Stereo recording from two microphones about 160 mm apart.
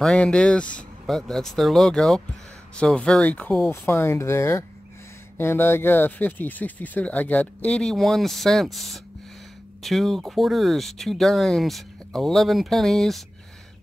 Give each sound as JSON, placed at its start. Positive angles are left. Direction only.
{"t": 0.0, "sound": "speech", "side_deg": 5}